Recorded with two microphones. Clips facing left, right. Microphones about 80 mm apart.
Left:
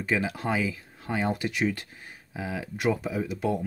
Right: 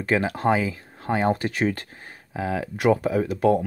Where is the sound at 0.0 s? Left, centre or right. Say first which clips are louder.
Right 6 dB; right.